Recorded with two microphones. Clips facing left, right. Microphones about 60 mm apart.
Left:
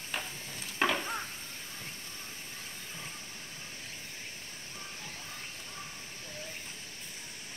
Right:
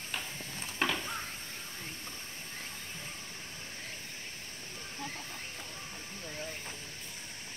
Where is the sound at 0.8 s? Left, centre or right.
Centre.